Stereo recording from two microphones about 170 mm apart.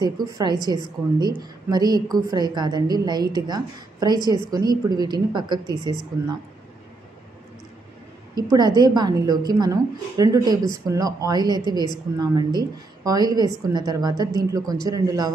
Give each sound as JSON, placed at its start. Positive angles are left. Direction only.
{"t": 0.0, "sound": "a woman's voice", "side_deg": -25}
{"t": 8.4, "sound": "a woman's voice", "side_deg": -25}